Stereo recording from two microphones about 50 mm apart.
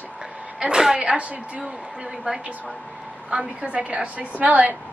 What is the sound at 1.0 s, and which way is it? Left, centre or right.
A woman's voice, right.